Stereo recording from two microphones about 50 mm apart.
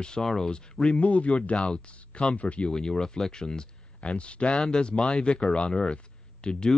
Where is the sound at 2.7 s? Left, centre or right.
Centre.